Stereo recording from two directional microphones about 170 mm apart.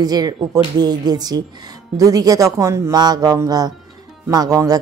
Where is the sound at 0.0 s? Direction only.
25° right (ahead or behind).